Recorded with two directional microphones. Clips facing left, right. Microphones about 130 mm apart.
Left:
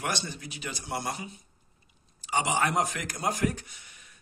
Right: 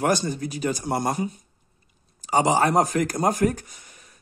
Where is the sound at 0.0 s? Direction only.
45° right (ahead or behind).